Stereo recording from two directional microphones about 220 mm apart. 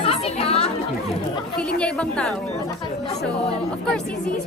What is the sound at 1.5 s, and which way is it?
Speech, 5° left (ahead or behind).